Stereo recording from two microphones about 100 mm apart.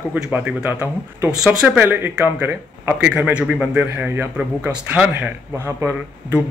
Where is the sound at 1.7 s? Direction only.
20° right (ahead or behind).